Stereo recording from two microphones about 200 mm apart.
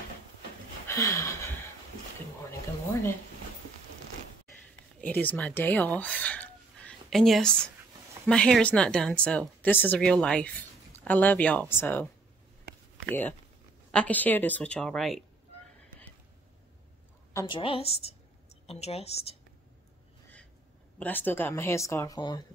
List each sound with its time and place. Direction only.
0.8 s a sound: 15° left (ahead or behind)
2.9 s speech: 10° left (ahead or behind)
5.0 s speech: 10° left (ahead or behind)
17.3 s a sound: 15° left (ahead or behind)
17.6 s a woman's voice: 30° left (ahead or behind)
21.0 s speech: 10° left (ahead or behind)